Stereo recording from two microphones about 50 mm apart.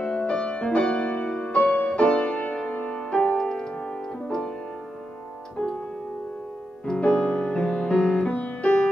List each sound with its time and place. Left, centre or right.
0.0 s music: left
5.6 s music: left
6.9 s music: centre
8.3 s music: left